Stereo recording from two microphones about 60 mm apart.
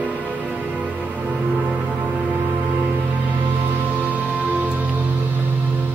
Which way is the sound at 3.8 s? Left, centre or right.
Right.